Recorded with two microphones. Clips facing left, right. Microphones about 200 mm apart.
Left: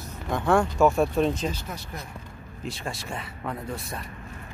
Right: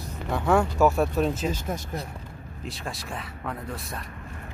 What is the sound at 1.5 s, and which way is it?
Speech, 50° right (ahead or behind).